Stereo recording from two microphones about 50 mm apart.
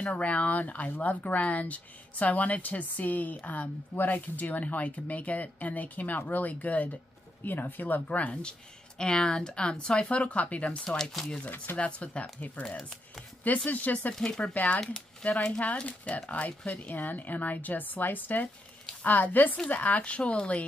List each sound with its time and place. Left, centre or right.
0.0 s speech: left
8.5 s speech: centre
10.8 s speech: centre
11.4 s speech: left
11.7 s speech: left
12.7 s speech: centre
13.7 s speech: left
14.1 s speech: centre
15.2 s speech: left